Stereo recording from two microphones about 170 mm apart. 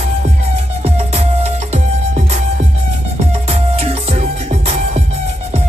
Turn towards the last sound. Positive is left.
turn(degrees=-40)  # may be behind; listen again after turning